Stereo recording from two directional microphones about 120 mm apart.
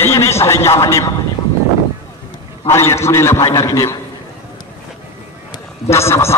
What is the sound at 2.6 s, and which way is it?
A man's voice, 20° left (ahead or behind).